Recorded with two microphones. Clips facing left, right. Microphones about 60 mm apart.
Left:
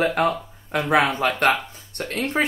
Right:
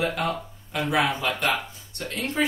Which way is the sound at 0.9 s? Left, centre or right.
Left.